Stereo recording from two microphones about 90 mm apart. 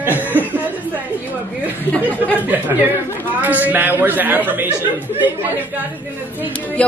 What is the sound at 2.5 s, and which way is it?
Speech, 20° right (ahead or behind).